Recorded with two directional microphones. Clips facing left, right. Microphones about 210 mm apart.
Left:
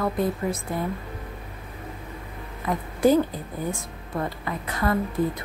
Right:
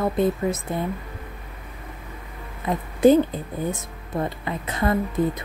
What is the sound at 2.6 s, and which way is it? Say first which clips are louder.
A woman's voice: right 4 dB; 20° right (ahead or behind).